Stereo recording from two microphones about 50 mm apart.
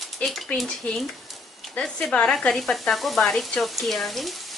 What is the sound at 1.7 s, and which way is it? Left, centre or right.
Speech, centre.